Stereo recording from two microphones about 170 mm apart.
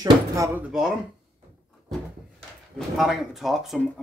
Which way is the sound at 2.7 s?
Centre (ahead or behind).